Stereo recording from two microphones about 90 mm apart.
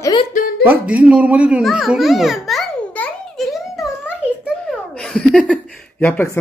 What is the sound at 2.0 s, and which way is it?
Speech, centre (ahead or behind).